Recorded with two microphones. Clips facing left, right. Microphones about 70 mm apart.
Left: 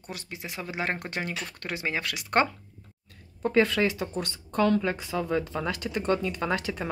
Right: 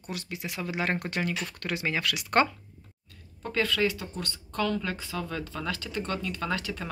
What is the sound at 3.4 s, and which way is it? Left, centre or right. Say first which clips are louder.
Speech: left 4 dB; left.